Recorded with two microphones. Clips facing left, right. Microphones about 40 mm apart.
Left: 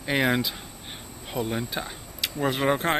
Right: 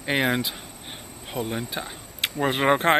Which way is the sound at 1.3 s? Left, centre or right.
Centre.